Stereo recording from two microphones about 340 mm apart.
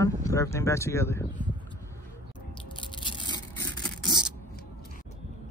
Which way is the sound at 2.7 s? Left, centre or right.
Centre.